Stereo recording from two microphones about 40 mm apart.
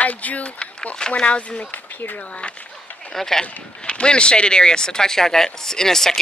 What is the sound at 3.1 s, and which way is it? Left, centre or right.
Speech, centre.